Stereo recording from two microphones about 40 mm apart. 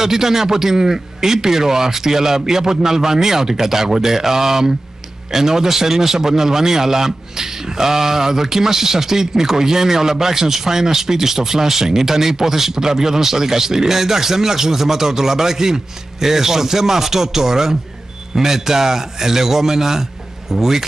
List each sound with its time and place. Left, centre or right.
0.0 s a man's voice: centre